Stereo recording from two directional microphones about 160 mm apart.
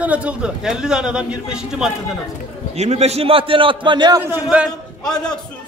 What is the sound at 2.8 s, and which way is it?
A man's voice, 45° right (ahead or behind).